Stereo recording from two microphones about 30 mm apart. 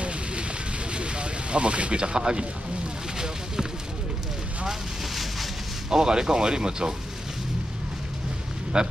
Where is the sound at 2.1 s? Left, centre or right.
Right.